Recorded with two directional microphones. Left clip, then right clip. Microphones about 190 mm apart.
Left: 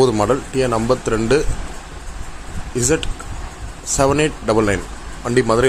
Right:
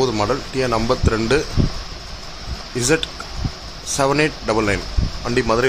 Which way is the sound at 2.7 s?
10° left (ahead or behind).